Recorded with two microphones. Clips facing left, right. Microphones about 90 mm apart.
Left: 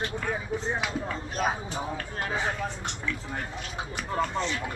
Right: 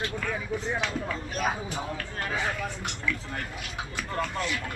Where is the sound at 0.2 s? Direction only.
25° left (ahead or behind).